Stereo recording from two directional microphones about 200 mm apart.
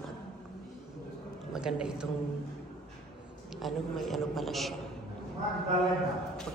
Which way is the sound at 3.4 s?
Centre (ahead or behind).